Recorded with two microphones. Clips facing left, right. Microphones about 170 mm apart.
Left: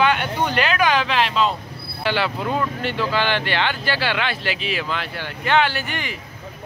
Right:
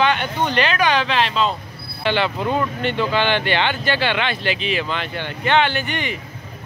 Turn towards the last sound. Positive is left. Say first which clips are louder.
# right 3 dB
turn(degrees=0)  # may be behind; listen again after turning